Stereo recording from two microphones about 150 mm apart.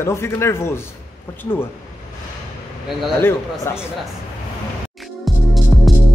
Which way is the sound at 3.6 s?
15° left (ahead or behind).